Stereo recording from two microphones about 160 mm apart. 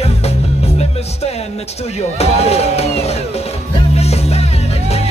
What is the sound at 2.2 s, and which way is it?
Speech, 40° left (ahead or behind).